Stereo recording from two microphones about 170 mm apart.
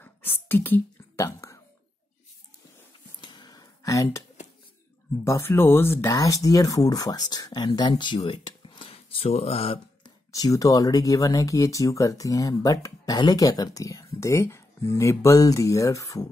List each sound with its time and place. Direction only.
0.5 s whispering: 10° left (ahead or behind)
3.2 s a sound: 25° left (ahead or behind)
5.2 s speech: 15° left (ahead or behind); by 10.1 s 35° left (ahead or behind)
10.3 s speech: 20° left (ahead or behind)